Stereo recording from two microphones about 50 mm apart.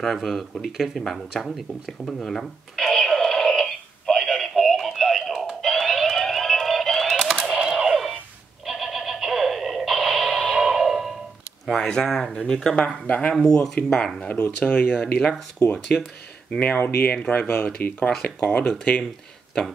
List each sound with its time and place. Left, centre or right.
0.0 s speech: centre
2.0 s a sound: centre
4.2 s music: centre
7.5 s a sound: centre
8.6 s synthetic singing: centre
10.5 s music: centre
11.8 s speech: centre
12.1 s speech: centre
12.4 s speech: centre
14.3 s speech: left
15.1 s speech: centre
16.4 s speech: left
17.8 s speech: left
18.2 s speech: left